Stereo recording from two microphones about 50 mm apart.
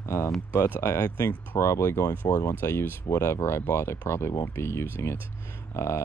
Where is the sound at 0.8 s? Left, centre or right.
Left.